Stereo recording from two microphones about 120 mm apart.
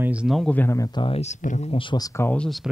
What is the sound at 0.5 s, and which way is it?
Speech, 25° left (ahead or behind).